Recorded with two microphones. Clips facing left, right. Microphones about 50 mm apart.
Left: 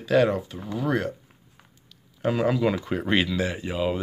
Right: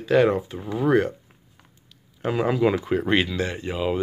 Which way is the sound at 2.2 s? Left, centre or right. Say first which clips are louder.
Right 1 dB; centre.